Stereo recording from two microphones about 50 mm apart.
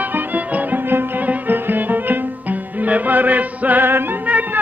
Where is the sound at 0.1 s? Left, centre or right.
Right.